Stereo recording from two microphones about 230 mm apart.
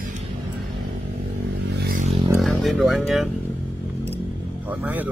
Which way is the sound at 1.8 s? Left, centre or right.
Right.